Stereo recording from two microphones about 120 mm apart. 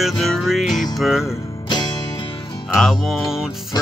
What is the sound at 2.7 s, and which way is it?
Music, centre (ahead or behind).